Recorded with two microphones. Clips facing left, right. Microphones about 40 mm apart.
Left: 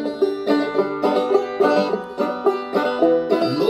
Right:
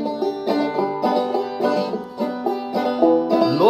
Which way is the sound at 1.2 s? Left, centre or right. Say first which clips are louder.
Left 3 dB; left.